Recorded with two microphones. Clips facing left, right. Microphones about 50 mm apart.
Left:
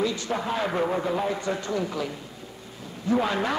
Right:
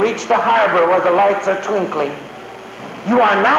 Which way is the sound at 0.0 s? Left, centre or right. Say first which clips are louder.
Right 12 dB; right.